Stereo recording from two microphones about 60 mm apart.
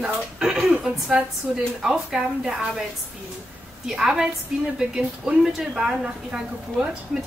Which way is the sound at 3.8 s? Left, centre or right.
Centre.